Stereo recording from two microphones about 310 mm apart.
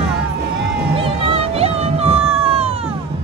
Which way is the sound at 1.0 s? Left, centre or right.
Centre.